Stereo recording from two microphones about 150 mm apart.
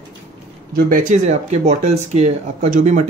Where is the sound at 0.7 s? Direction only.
65° right (ahead or behind).